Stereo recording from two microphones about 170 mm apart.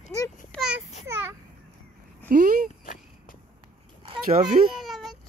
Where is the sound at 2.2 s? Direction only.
55° right (ahead or behind).